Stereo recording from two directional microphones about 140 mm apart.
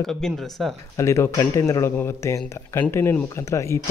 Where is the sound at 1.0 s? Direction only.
20° left (ahead or behind).